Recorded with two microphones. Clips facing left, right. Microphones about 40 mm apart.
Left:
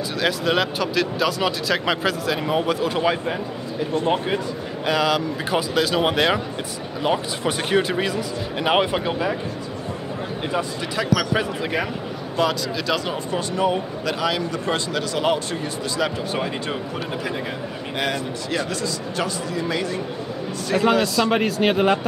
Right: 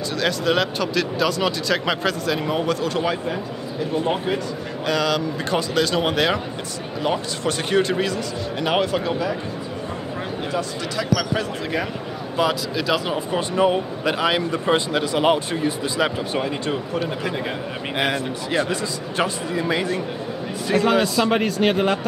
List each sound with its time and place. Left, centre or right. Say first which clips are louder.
0.1 s speech: right 1 dB; centre
10.4 s speech: left 2 dB; centre
12.4 s speech: right 1 dB; centre
17.0 s speech: right 2 dB; centre
17.9 s speech: right 2 dB; centre
20.9 s speech: even; centre